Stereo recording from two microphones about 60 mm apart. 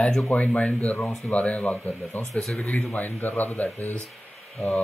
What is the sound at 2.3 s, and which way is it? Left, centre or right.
Speech, centre.